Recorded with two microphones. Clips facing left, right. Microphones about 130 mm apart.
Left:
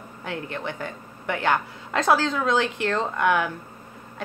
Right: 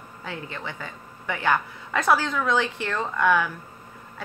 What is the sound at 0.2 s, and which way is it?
Speech, 65° left (ahead or behind).